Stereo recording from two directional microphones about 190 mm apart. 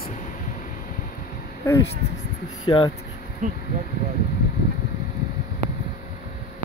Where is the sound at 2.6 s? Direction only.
25° left (ahead or behind).